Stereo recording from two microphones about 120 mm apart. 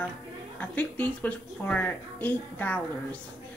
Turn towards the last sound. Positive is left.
turn(degrees=15)  # may be behind; listen again after turning